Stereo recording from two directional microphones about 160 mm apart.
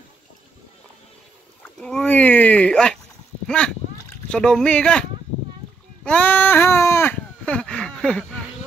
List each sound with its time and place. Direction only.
1.6 s speech: 5° left (ahead or behind)
6.0 s sheep: 10° left (ahead or behind)